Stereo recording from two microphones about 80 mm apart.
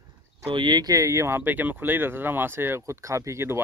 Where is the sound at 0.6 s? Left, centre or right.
Right.